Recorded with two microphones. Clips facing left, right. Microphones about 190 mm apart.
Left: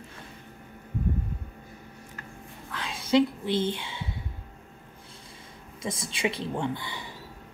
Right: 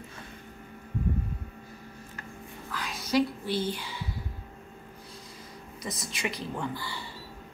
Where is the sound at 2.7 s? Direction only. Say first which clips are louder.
Left 4 dB; 25° left (ahead or behind).